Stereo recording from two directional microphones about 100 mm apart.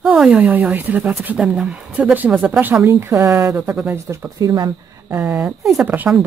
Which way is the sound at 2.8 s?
30° right (ahead or behind).